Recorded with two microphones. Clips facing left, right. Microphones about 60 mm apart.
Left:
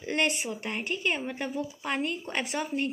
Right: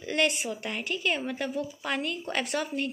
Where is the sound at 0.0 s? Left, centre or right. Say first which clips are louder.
Right 1 dB; left.